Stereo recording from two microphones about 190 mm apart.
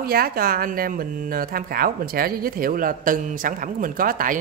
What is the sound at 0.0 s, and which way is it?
Speech, 50° right (ahead or behind).